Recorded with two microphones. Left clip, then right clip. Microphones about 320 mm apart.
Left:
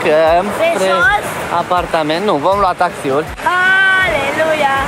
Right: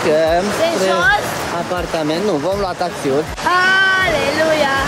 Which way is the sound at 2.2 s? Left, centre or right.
Centre.